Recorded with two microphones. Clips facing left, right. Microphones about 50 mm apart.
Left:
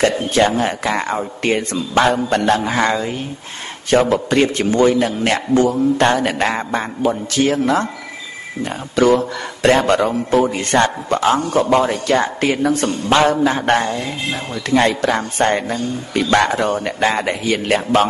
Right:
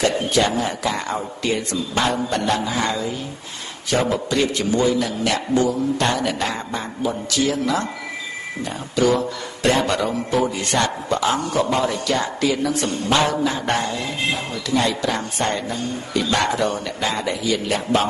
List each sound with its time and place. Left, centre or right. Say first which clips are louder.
0.0 s a man's voice: left 4 dB; left